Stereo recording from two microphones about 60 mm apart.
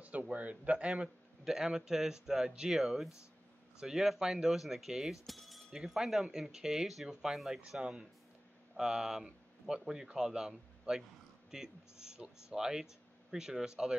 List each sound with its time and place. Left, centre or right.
0.3 s speech: right
1.4 s speech: centre
2.7 s speech: centre